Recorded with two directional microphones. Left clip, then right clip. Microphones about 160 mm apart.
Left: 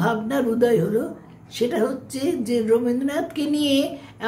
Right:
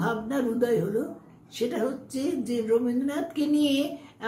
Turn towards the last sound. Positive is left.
turn(degrees=20)  # may be behind; listen again after turning